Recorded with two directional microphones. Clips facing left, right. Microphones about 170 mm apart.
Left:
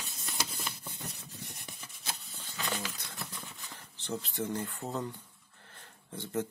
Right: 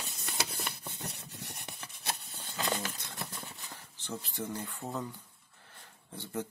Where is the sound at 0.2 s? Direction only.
60° right (ahead or behind).